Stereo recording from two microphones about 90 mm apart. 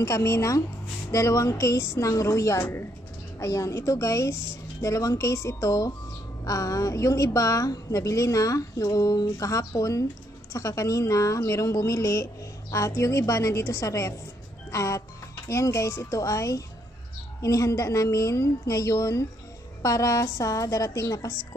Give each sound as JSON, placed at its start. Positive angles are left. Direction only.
{"t": 0.0, "sound": "a woman's voice", "side_deg": 30}